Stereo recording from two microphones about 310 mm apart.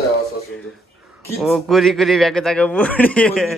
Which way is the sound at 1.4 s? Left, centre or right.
Centre.